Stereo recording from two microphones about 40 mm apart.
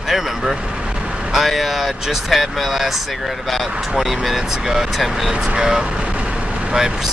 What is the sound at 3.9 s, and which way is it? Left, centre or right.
Speech, centre.